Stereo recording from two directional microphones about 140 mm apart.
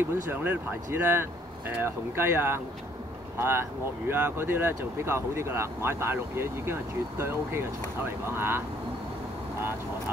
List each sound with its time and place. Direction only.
0.0 s speech: 15° right (ahead or behind)